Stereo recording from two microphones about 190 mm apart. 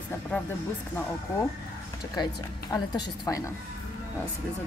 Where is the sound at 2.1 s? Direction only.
20° left (ahead or behind).